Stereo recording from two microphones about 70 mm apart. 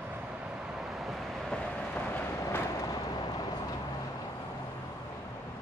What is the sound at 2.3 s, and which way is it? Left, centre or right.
Vehicle, left.